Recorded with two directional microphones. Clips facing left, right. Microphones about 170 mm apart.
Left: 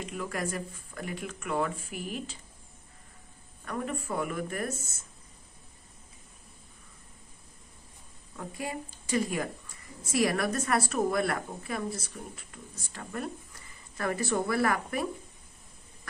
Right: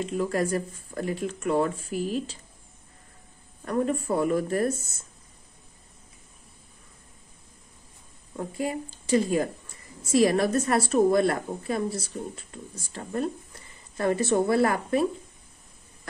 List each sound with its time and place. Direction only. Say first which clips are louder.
0.0 s speech: right 8 dB; 35° right (ahead or behind)
3.6 s speech: right 8 dB; 35° right (ahead or behind)
8.4 s a woman's voice: right 7 dB; 30° right (ahead or behind)